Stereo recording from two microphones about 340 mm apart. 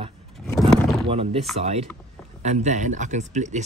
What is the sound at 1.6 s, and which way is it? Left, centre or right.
Speech, right.